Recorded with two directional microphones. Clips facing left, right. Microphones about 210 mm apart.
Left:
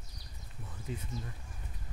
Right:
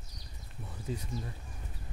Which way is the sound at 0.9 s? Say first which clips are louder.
Right 3 dB; 35° right (ahead or behind).